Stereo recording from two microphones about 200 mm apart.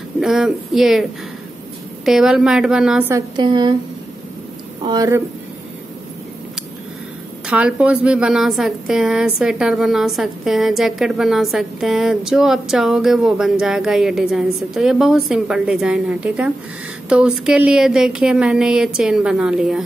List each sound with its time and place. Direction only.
0.2 s a woman's voice: centre (ahead or behind)
2.0 s a woman's voice: 5° right (ahead or behind)
3.1 s a woman's voice: 20° right (ahead or behind)
4.8 s speech: 15° right (ahead or behind)
7.4 s a woman's voice: 5° right (ahead or behind)